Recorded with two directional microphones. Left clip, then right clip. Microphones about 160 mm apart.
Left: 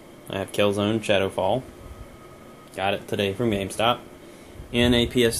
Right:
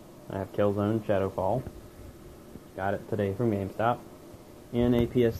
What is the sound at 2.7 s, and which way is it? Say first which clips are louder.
Speech: left 5 dB; 25° left (ahead or behind).